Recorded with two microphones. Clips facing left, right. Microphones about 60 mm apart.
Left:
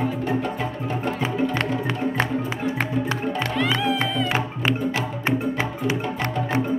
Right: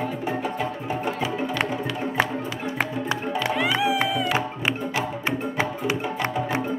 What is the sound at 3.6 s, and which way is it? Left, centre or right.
Music, centre.